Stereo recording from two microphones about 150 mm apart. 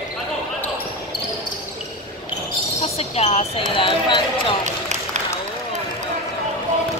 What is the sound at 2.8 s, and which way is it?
Speech, 45° left (ahead or behind).